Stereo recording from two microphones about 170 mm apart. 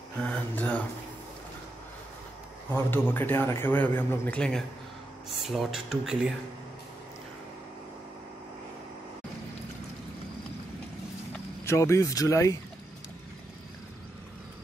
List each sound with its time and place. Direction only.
0.2 s speech: 5° left (ahead or behind)
2.7 s a man's voice: 10° left (ahead or behind)
11.3 s speech: 15° left (ahead or behind)